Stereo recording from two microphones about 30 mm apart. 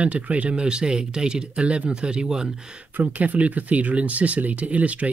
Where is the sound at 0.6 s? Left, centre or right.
Right.